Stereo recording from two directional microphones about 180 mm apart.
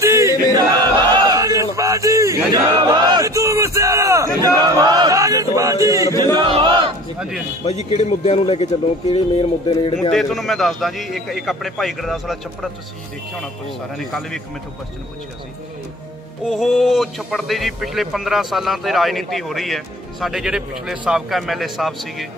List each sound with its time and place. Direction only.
0.0 s a sound: 15° right (ahead or behind)
3.1 s battle cry: 20° right (ahead or behind)
6.1 s chant: 25° right (ahead or behind)
7.2 s speech: centre (ahead or behind)
7.6 s speech: 35° left (ahead or behind)
10.1 s speech: centre (ahead or behind)
13.9 s speech: centre (ahead or behind)
16.4 s speech: centre (ahead or behind)